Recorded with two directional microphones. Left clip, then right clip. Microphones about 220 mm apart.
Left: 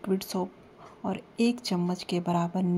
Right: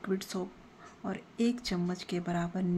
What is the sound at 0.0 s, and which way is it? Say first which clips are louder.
A woman's voice: left 5 dB; 15° left (ahead or behind).